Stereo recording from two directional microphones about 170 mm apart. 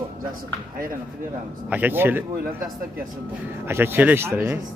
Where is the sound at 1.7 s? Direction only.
10° right (ahead or behind).